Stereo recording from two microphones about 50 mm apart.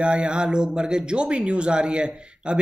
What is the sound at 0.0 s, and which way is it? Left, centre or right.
A man's voice, right.